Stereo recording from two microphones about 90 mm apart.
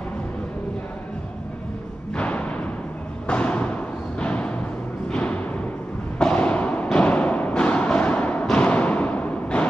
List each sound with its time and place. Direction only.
2.1 s music: 15° left (ahead or behind)